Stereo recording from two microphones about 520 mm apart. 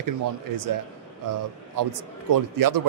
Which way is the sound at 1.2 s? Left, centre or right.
Right.